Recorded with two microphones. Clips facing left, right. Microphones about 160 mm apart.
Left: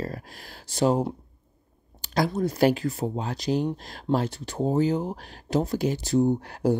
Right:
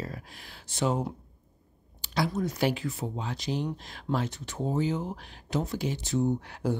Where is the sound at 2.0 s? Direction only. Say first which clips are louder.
Left 4 dB; 45° left (ahead or behind).